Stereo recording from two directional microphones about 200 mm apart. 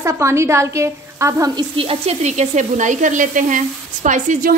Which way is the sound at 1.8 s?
30° right (ahead or behind).